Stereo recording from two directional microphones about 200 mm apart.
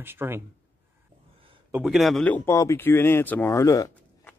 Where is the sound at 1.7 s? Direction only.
Centre (ahead or behind).